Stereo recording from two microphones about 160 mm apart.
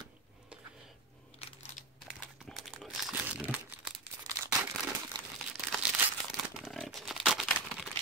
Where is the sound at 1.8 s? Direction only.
50° left (ahead or behind).